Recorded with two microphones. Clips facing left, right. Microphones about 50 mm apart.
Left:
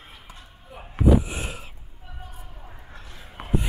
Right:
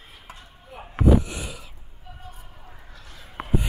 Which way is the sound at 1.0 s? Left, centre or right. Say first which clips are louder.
Even; right.